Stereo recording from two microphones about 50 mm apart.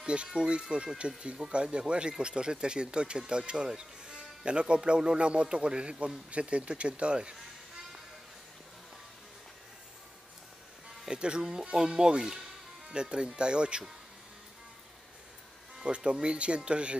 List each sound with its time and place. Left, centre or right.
0.0 s speech: right
11.1 s speech: centre
15.8 s speech: centre